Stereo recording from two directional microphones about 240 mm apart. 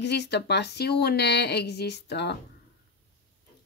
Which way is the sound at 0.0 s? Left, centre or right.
Left.